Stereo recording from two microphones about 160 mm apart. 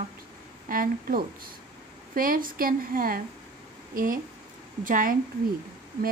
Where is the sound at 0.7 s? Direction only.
65° right (ahead or behind).